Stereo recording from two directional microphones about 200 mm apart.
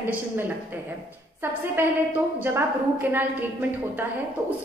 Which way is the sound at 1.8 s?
10° right (ahead or behind).